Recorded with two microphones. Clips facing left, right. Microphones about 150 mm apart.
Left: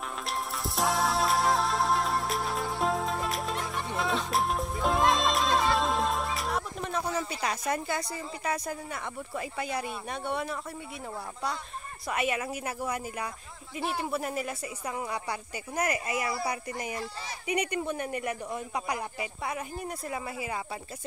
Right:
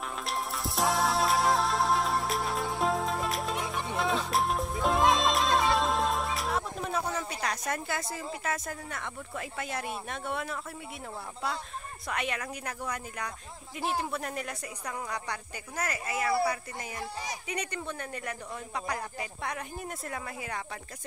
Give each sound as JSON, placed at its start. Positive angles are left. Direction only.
{"t": 0.2, "sound": "music", "side_deg": 0}
{"t": 12.1, "sound": "speech", "side_deg": 5}